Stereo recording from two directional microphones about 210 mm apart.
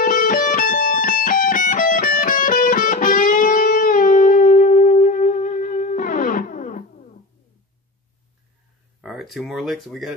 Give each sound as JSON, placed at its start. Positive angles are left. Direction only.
{"t": 0.0, "sound": "music", "side_deg": 40}
{"t": 9.0, "sound": "speech", "side_deg": 0}